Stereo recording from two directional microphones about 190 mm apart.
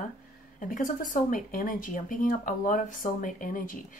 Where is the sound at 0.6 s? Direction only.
45° left (ahead or behind).